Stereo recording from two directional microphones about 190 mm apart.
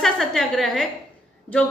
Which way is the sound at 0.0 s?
Centre (ahead or behind).